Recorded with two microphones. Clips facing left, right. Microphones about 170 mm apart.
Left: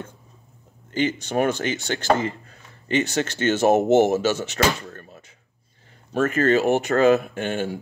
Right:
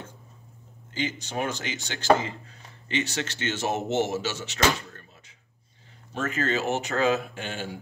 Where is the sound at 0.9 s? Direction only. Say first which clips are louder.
Left 8 dB; 55° left (ahead or behind).